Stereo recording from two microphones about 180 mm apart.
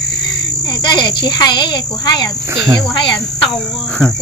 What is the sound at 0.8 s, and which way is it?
A child's voice, 25° left (ahead or behind).